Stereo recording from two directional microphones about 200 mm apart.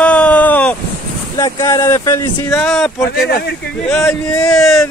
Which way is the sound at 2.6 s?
5° left (ahead or behind).